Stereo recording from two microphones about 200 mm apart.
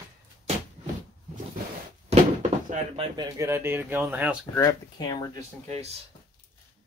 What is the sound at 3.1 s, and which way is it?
Speech, 15° right (ahead or behind).